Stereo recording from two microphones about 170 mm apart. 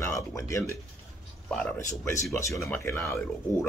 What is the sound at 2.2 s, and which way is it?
Speech, 15° left (ahead or behind).